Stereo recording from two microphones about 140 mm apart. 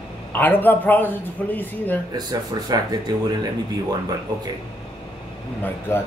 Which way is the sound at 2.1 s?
30° right (ahead or behind).